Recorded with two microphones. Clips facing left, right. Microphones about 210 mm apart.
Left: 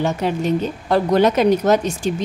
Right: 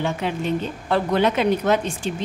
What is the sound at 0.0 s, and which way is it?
A woman's voice, 40° left (ahead or behind).